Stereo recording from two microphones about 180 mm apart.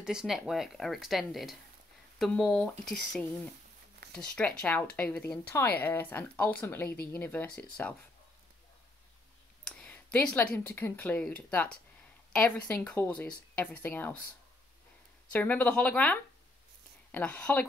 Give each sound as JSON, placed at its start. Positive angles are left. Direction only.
{"t": 0.0, "sound": "speech", "side_deg": -5}
{"t": 4.0, "sound": "zipper", "side_deg": -70}
{"t": 4.4, "sound": "speech", "side_deg": 5}
{"t": 6.9, "sound": "speech", "side_deg": 60}
{"t": 7.2, "sound": "speech", "side_deg": 10}
{"t": 9.7, "sound": "a sound", "side_deg": 5}
{"t": 10.1, "sound": "speech", "side_deg": 5}
{"t": 15.3, "sound": "speech", "side_deg": 10}